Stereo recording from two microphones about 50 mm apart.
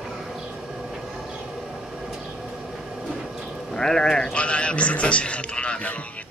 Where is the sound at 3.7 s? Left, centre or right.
Centre; by 6.3 s left.